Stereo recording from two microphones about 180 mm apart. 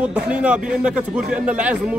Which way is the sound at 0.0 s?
5° right (ahead or behind).